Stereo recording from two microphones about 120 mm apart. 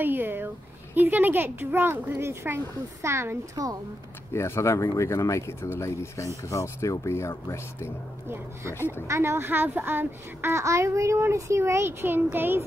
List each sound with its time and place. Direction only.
0.0 s a child's voice: 15° right (ahead or behind)
4.3 s speech: 25° left (ahead or behind)
9.0 s a child's voice: 25° right (ahead or behind)